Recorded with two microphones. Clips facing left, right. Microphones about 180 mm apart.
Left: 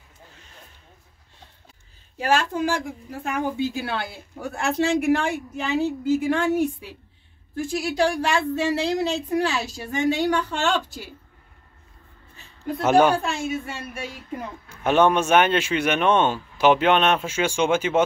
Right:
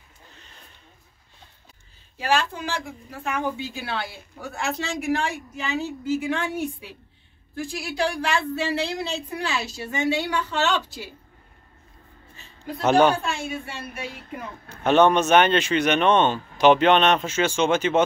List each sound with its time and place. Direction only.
2.1 s speech: 45° left (ahead or behind)
4.6 s a woman's voice: 55° left (ahead or behind)
6.3 s speech: 45° left (ahead or behind)
12.8 s speech: 5° left (ahead or behind)
13.3 s speech: 45° left (ahead or behind)
14.8 s speech: 10° left (ahead or behind)